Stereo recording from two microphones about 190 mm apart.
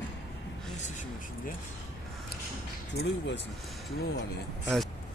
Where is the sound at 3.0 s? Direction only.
55° left (ahead or behind).